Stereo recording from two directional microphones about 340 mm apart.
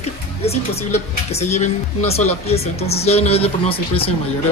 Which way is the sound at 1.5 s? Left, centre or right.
Centre.